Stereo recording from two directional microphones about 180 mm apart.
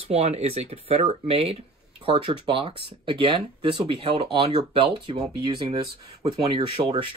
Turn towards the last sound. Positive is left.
turn(degrees=-30)  # may be behind; listen again after turning